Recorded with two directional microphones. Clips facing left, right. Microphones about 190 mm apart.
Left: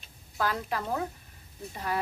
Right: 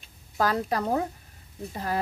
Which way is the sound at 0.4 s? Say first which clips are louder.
Right 5 dB; 40° right (ahead or behind).